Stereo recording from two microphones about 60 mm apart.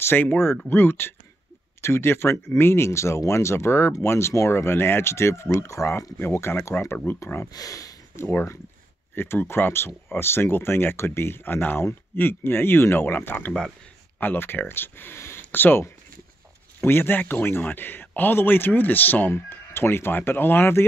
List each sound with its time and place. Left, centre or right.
0.0 s speech: left
7.5 s speech: left
8.2 s speech: left